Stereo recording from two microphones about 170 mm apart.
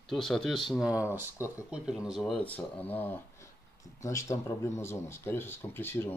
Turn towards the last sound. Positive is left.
turn(degrees=15)  # may be behind; listen again after turning